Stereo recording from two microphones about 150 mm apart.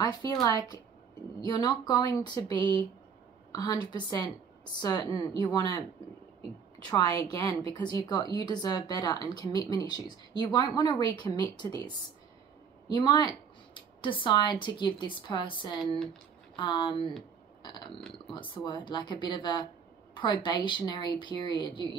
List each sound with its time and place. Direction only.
0.0 s a woman's voice: 25° left (ahead or behind)
6.9 s a woman's voice: 25° left (ahead or behind)
18.2 s speech: 30° left (ahead or behind)